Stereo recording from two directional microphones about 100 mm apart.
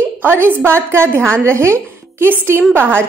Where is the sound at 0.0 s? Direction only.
20° right (ahead or behind).